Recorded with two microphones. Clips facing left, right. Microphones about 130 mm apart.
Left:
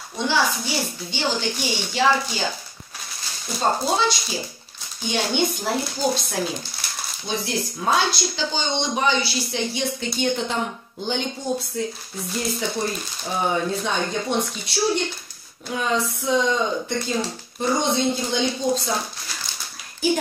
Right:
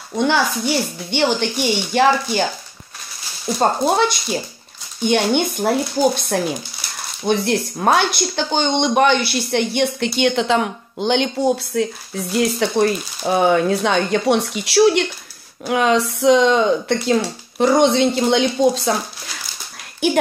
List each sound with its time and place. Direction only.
1.1 s speech: 60° right (ahead or behind)
3.5 s speech: 55° right (ahead or behind)
10.1 s speech: 85° right
20.0 s speech: 70° right (ahead or behind)